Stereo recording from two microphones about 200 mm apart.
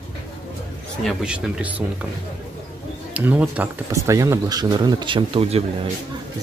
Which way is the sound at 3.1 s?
10° right (ahead or behind).